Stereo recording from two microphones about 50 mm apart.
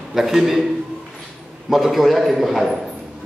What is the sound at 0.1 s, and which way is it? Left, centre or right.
Speech, centre.